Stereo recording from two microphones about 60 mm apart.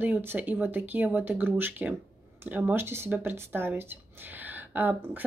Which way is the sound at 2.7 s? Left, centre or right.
Right.